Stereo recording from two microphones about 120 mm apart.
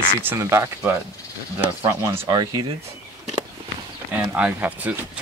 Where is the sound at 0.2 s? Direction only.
20° right (ahead or behind).